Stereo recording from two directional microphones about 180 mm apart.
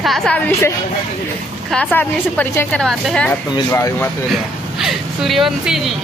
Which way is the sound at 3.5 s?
15° left (ahead or behind).